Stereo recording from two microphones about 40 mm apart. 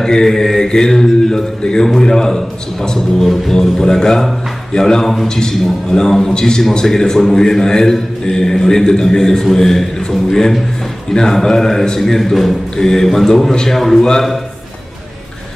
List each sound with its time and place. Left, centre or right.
0.0 s a man's voice: centre
12.7 s a man's voice: centre